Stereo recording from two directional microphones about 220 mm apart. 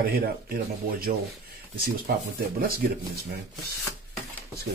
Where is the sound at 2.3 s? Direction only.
40° right (ahead or behind).